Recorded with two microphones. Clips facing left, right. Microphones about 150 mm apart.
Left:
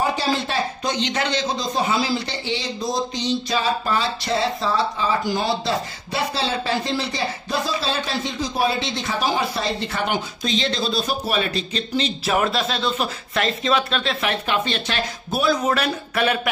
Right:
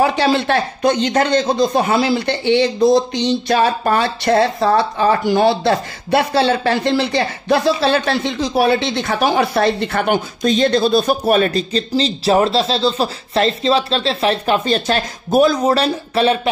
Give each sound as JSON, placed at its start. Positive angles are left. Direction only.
{"t": 0.0, "sound": "speech", "side_deg": -70}
{"t": 0.9, "sound": "a man's voice", "side_deg": -45}